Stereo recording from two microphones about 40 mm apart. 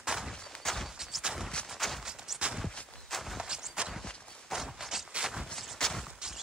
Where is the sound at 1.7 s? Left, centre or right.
Centre.